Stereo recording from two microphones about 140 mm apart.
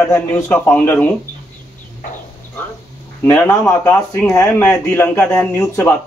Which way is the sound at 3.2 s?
15° left (ahead or behind).